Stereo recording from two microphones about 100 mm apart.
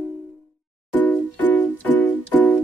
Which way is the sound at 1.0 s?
15° left (ahead or behind).